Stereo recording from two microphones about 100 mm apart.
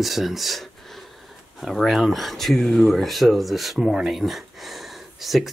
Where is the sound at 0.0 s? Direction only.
Centre (ahead or behind).